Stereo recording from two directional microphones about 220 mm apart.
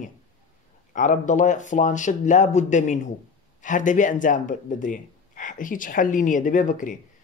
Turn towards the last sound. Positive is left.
turn(degrees=35)  # may be behind; listen again after turning